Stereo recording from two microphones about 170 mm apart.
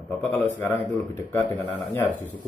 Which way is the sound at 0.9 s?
15° left (ahead or behind).